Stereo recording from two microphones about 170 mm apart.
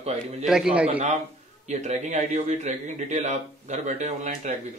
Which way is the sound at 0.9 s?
40° right (ahead or behind).